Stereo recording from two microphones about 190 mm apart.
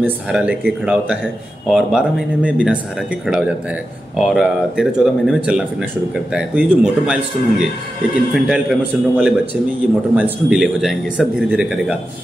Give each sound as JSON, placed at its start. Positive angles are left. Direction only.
{"t": 0.0, "sound": "speech", "side_deg": -5}